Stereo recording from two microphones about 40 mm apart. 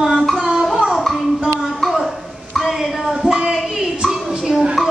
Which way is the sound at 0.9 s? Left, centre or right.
Centre.